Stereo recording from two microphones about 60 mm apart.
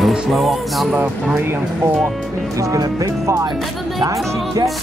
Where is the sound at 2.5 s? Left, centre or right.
Right.